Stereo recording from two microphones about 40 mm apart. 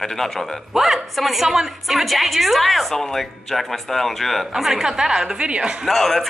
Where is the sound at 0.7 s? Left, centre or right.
Centre.